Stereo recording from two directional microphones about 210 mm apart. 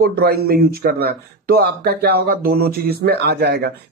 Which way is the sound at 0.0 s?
50° right (ahead or behind).